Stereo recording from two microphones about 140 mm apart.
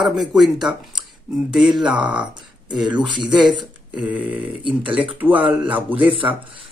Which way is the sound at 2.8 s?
35° right (ahead or behind).